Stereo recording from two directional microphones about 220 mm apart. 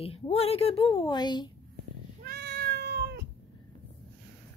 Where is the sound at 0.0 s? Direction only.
25° left (ahead or behind).